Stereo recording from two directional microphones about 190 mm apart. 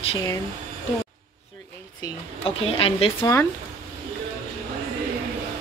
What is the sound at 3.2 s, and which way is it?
Speech, 15° left (ahead or behind).